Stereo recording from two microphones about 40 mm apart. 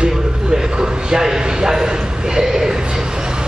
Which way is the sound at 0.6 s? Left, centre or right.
Centre.